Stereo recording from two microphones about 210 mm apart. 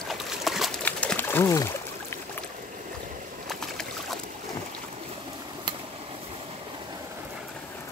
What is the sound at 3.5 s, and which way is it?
Boat, centre (ahead or behind).